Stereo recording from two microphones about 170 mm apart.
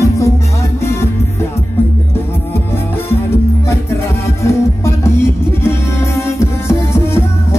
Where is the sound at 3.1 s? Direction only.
15° left (ahead or behind).